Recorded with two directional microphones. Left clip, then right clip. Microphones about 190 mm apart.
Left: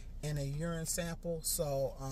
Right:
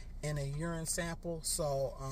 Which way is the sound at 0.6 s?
20° left (ahead or behind).